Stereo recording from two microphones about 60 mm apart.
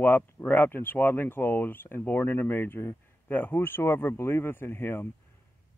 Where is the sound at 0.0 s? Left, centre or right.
Left.